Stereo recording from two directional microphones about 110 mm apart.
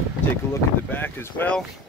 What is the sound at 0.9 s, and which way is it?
Speech, 20° left (ahead or behind).